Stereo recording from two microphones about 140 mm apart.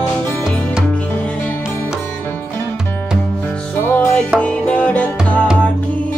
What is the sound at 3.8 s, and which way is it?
Music, 15° left (ahead or behind).